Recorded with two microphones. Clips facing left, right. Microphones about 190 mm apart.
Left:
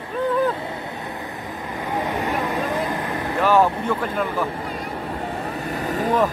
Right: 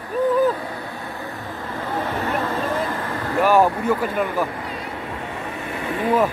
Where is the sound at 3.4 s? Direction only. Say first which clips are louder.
Right 1 dB; 10° right (ahead or behind).